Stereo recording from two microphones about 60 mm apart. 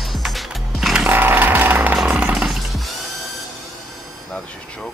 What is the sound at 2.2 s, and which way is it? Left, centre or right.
Music, centre.